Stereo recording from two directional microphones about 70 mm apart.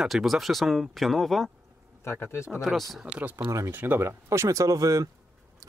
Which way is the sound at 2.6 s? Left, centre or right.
Centre.